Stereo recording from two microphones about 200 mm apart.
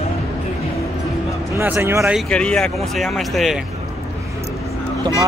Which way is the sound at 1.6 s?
10° right (ahead or behind).